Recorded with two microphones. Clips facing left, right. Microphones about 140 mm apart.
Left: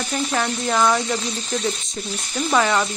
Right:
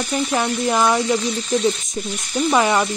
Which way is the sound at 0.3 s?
15° right (ahead or behind).